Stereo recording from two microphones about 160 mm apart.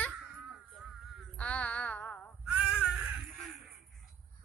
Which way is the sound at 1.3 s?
5° left (ahead or behind).